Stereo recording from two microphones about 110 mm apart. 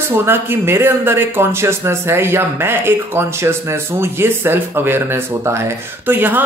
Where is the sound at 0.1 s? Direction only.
20° right (ahead or behind).